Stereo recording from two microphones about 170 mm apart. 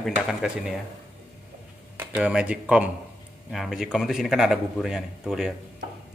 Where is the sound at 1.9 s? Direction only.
10° right (ahead or behind).